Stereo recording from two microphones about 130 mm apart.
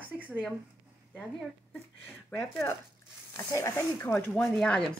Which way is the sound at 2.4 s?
20° left (ahead or behind).